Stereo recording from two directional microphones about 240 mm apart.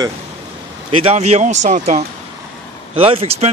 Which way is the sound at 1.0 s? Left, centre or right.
Right.